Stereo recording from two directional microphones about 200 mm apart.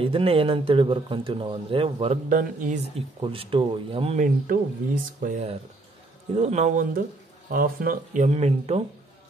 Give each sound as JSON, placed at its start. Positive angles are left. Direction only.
{"t": 0.0, "sound": "speech", "side_deg": -25}
{"t": 2.2, "sound": "speech", "side_deg": -40}
{"t": 3.2, "sound": "speech", "side_deg": -25}